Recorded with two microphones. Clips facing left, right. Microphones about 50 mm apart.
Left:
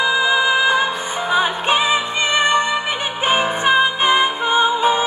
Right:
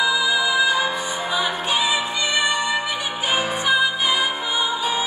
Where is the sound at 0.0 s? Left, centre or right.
Left.